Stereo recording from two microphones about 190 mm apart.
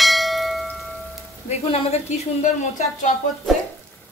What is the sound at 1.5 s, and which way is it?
A woman's voice, 35° left (ahead or behind).